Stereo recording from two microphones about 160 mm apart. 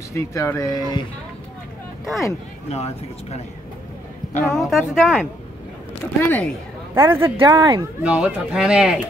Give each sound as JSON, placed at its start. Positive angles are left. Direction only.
{"t": 0.1, "sound": "speech", "side_deg": 20}
{"t": 2.7, "sound": "speech", "side_deg": 40}
{"t": 4.4, "sound": "a woman's voice", "side_deg": 0}
{"t": 6.2, "sound": "speech", "side_deg": 10}
{"t": 7.0, "sound": "speech", "side_deg": -15}
{"t": 7.2, "sound": "speech", "side_deg": -30}
{"t": 8.0, "sound": "speech", "side_deg": -5}